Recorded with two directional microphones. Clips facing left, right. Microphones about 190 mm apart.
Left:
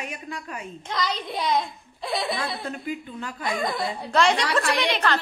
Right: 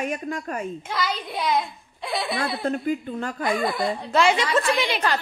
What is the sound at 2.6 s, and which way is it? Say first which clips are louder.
Speech: right 7 dB; 45° right (ahead or behind).